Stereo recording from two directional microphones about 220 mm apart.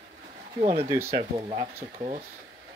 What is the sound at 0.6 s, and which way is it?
Speech, 25° right (ahead or behind).